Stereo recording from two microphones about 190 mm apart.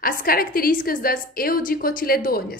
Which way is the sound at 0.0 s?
50° left (ahead or behind).